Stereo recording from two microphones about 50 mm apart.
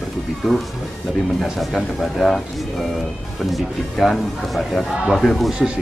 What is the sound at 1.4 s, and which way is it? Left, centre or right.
Speech, centre.